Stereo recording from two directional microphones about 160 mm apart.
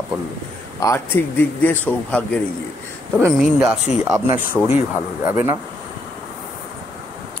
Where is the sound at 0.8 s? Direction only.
15° left (ahead or behind).